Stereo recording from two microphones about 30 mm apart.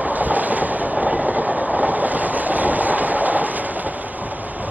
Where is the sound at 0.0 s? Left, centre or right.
Right.